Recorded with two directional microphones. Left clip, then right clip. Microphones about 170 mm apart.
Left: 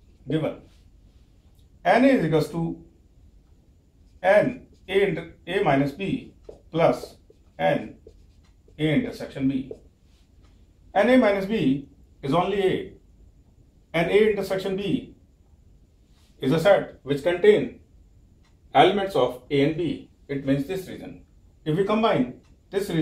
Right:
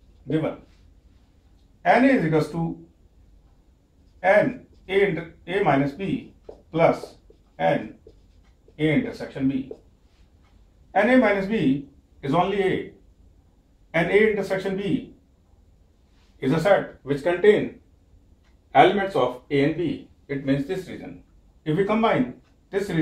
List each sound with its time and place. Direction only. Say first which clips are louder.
1.8 s speech: right 1 dB; 10° right (ahead or behind)
4.2 s speech: even; 5° right (ahead or behind)
10.9 s a man's voice: even; 10° right (ahead or behind)
13.9 s speech: right 1 dB; 10° right (ahead or behind)
16.3 s speech: left 1 dB; 5° right (ahead or behind)
18.7 s speech: right 1 dB; 10° right (ahead or behind)